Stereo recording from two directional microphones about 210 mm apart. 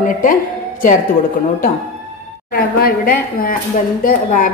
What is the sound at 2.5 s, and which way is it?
A woman's voice, 45° left (ahead or behind).